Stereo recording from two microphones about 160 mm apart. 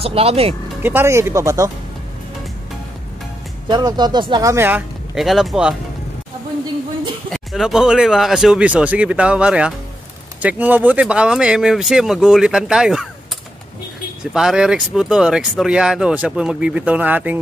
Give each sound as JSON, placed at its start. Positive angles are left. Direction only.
{"t": 0.0, "sound": "speech", "side_deg": -40}
{"t": 0.8, "sound": "speech", "side_deg": -15}
{"t": 3.6, "sound": "speech", "side_deg": -25}
{"t": 7.2, "sound": "speech", "side_deg": 0}
{"t": 14.3, "sound": "speech", "side_deg": -5}